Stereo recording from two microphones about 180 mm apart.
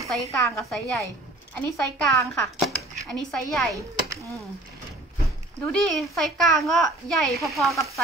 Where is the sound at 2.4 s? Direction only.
Centre (ahead or behind).